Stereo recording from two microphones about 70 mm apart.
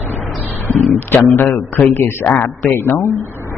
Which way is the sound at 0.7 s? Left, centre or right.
Left.